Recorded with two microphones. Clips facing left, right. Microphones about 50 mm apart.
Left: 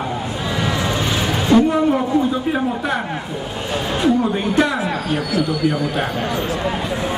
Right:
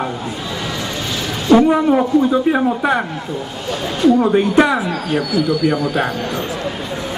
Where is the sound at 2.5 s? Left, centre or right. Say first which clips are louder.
Right 4 dB; centre.